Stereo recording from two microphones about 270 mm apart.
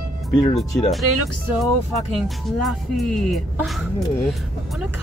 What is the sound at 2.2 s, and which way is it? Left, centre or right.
Speech, centre.